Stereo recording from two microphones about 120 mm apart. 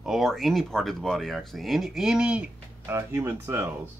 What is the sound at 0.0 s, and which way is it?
Speech, centre (ahead or behind).